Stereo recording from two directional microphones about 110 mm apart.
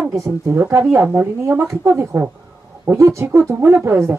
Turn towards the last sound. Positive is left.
turn(degrees=-20)  # may be behind; listen again after turning